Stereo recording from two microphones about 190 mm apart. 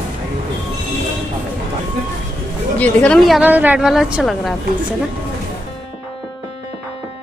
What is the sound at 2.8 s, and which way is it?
A woman's voice, 5° left (ahead or behind).